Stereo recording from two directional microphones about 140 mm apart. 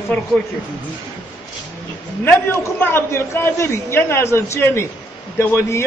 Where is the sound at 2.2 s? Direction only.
15° left (ahead or behind).